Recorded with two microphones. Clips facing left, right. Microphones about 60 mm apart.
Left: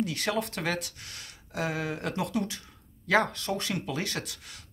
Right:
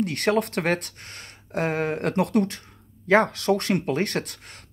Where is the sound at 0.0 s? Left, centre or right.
Right.